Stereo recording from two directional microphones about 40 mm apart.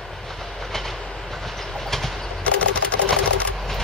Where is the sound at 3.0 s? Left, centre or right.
Centre.